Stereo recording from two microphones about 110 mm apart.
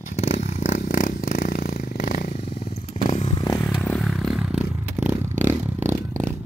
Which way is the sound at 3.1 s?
70° left (ahead or behind).